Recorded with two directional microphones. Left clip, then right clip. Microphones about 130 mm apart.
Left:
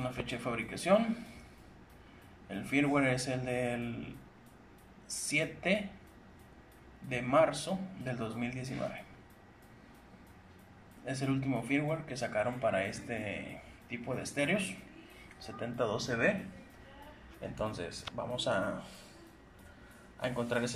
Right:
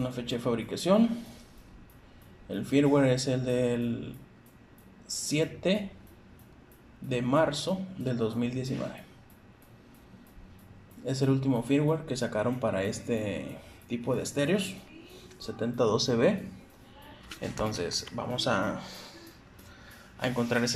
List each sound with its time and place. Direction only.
0.0 s a man's voice: 25° right (ahead or behind)
2.4 s a man's voice: 25° right (ahead or behind)
5.2 s a man's voice: 25° right (ahead or behind)
7.1 s a man's voice: 30° right (ahead or behind)
11.1 s a man's voice: 25° right (ahead or behind)
16.1 s speech: 35° right (ahead or behind)
17.4 s a man's voice: 20° right (ahead or behind)
20.2 s speech: 10° right (ahead or behind)